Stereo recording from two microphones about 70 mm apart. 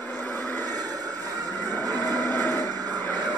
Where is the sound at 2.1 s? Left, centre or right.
Right.